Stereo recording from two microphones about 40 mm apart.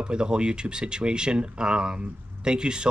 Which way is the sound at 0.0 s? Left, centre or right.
Right.